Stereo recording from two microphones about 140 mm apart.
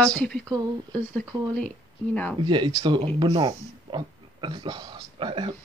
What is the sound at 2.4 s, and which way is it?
Speech, 35° right (ahead or behind).